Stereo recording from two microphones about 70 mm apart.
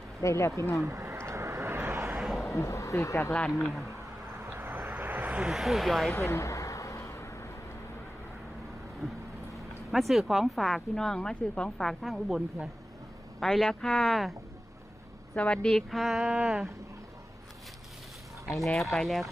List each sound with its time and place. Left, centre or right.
0.2 s speech: left
0.8 s a sound: right
2.1 s a sound: centre
2.5 s speech: left
3.4 s speech: centre
4.5 s vehicle: right
5.4 s speech: centre
6.1 s vehicle: left
9.8 s speech: centre
15.3 s speech: centre
16.3 s a sound: centre
18.6 s speech: centre